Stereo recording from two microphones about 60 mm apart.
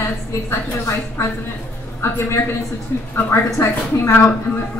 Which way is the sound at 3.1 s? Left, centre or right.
Left.